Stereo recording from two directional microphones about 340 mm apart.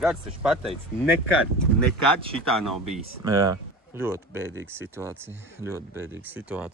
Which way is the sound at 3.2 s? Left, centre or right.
Centre.